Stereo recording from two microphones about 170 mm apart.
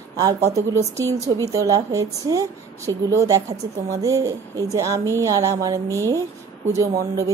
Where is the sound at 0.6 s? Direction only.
20° right (ahead or behind).